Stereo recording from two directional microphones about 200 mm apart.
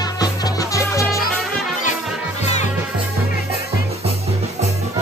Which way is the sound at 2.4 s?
35° left (ahead or behind).